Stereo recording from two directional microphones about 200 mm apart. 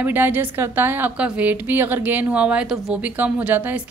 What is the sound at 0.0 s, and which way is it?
Speech, 10° right (ahead or behind).